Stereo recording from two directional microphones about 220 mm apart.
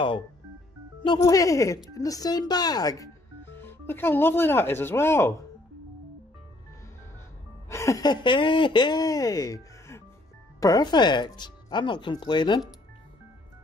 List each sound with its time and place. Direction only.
1.0 s speech: 20° left (ahead or behind)
7.7 s speech: 15° left (ahead or behind)